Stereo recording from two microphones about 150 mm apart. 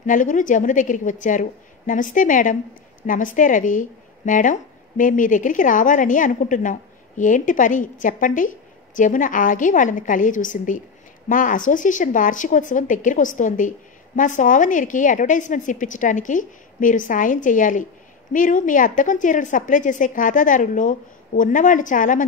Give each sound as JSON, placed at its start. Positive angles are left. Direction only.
{"t": 0.0, "sound": "speech", "side_deg": 60}